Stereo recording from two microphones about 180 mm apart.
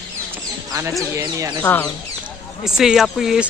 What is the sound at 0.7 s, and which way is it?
Speech, 15° right (ahead or behind).